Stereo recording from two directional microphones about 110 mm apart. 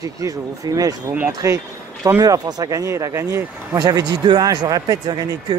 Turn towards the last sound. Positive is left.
turn(degrees=-35)  # may be behind; listen again after turning